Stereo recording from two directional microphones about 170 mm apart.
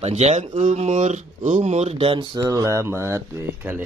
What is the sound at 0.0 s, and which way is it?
A man's voice, 40° right (ahead or behind).